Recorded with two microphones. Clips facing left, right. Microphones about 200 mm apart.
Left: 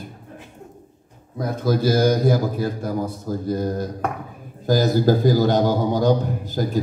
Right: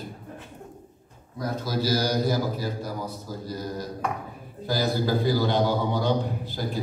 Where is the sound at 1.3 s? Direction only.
55° left (ahead or behind).